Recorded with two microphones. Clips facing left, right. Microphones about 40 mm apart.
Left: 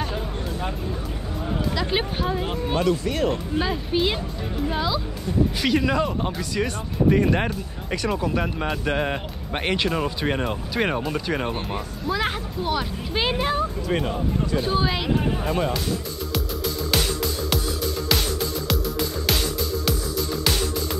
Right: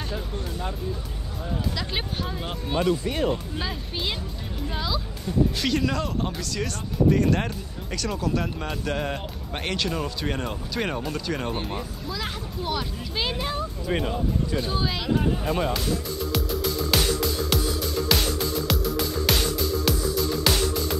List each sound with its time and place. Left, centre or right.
1.8 s speech: centre
13.1 s speech: left
15.4 s speech: centre
16.3 s music: centre